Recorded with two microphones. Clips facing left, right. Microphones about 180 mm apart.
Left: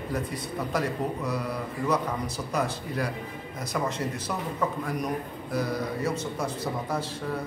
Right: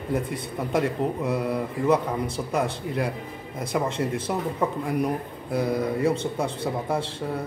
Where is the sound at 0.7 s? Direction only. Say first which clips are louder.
Right 5 dB; 25° right (ahead or behind).